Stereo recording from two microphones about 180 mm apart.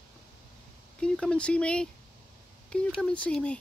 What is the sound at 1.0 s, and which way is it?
Speech, 5° left (ahead or behind).